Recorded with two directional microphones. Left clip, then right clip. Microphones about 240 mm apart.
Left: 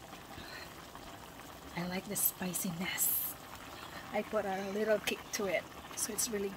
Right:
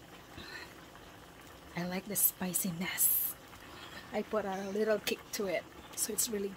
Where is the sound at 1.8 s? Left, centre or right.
Centre.